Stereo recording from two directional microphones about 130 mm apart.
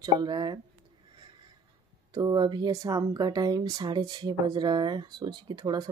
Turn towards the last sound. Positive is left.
turn(degrees=-35)  # may be behind; listen again after turning